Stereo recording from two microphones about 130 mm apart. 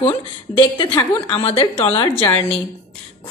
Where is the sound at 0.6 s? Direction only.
35° left (ahead or behind).